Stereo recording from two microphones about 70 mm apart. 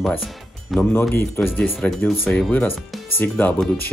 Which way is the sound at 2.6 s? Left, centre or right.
Left.